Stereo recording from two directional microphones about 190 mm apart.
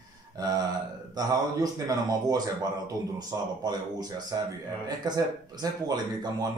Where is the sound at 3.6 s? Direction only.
20° right (ahead or behind).